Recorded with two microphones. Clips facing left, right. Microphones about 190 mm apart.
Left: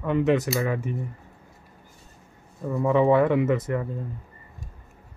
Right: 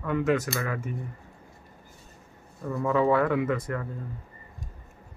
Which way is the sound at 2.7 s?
20° left (ahead or behind).